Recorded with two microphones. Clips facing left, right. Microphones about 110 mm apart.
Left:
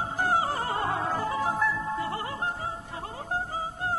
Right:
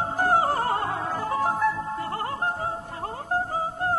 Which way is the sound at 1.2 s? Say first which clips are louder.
Right 7 dB; 50° right (ahead or behind).